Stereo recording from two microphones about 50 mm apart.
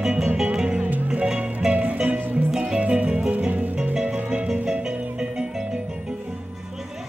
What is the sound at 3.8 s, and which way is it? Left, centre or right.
Music, centre.